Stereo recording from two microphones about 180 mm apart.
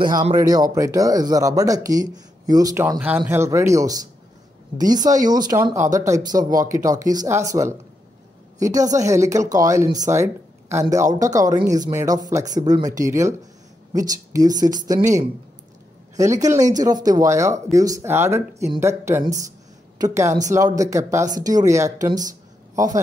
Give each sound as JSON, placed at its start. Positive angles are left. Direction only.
{"t": 0.0, "sound": "a woman's voice", "side_deg": -25}
{"t": 16.2, "sound": "speech", "side_deg": -20}